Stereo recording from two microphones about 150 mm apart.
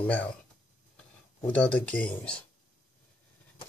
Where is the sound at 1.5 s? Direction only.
10° left (ahead or behind).